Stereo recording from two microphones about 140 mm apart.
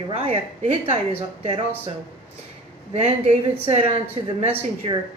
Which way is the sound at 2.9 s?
50° right (ahead or behind).